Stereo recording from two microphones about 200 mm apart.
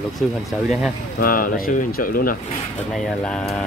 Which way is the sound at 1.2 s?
45° left (ahead or behind).